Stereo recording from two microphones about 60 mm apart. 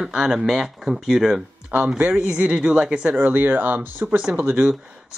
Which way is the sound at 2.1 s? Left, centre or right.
Centre.